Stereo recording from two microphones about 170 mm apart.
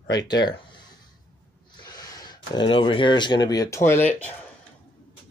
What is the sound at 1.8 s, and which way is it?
Speech, 25° left (ahead or behind).